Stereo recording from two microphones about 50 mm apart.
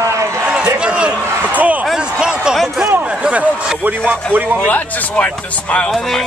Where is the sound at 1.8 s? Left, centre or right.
Centre.